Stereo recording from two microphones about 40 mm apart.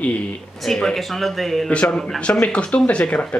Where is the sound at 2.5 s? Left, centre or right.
Left.